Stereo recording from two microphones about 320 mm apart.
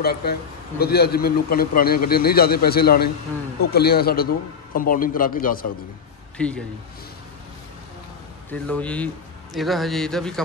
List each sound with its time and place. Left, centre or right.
0.0 s a man's voice: left
6.3 s speech: centre
8.5 s speech: centre